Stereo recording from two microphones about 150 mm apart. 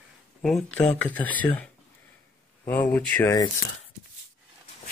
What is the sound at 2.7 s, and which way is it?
Speech, 10° left (ahead or behind).